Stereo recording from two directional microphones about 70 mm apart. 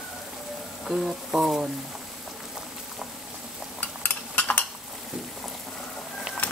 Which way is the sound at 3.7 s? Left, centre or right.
Left.